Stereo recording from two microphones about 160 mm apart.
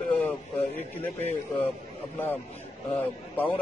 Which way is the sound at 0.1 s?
10° left (ahead or behind).